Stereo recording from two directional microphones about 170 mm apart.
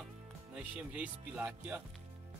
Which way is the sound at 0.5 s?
5° right (ahead or behind).